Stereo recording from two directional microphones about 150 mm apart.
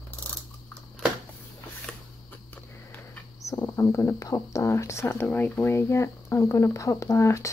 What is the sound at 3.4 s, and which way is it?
Speech, 20° left (ahead or behind).